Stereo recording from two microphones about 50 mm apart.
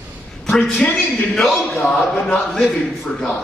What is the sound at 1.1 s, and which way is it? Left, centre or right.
Speech, centre.